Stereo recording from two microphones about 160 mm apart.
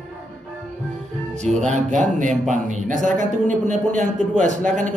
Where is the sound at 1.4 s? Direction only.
50° right (ahead or behind).